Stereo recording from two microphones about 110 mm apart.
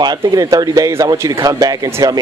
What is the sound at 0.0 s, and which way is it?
Speech, 35° right (ahead or behind).